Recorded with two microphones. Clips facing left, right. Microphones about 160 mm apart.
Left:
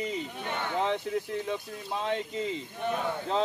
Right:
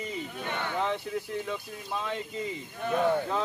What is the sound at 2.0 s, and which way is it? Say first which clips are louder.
Speech: left 6 dB; 20° left (ahead or behind).